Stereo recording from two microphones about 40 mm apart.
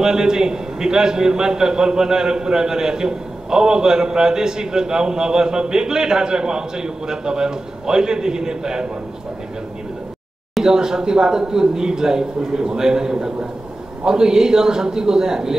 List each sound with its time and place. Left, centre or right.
0.0 s a man's voice: centre
10.6 s a man's voice: centre